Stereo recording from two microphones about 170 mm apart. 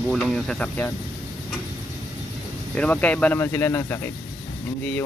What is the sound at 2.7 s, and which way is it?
Speech, 10° left (ahead or behind).